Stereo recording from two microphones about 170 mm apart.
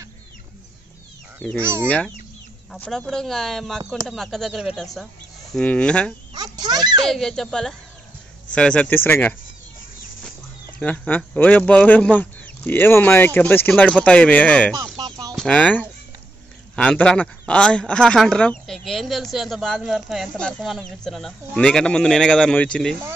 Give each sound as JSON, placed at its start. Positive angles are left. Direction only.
{"t": 1.6, "sound": "speech", "side_deg": -15}
{"t": 1.9, "sound": "speech", "side_deg": 10}
{"t": 6.3, "sound": "speech", "side_deg": -25}
{"t": 7.1, "sound": "speech", "side_deg": 5}
{"t": 10.8, "sound": "speech", "side_deg": 10}
{"t": 14.8, "sound": "music", "side_deg": -25}
{"t": 15.3, "sound": "speech", "side_deg": 5}